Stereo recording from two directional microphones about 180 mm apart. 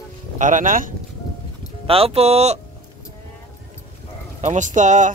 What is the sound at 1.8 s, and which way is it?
Speech, 30° right (ahead or behind).